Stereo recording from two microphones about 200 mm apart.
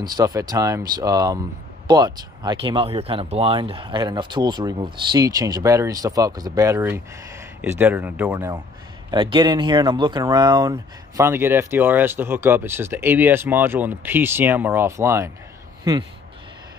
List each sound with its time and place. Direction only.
0.1 s speech: 15° right (ahead or behind)
9.1 s speech: 25° right (ahead or behind)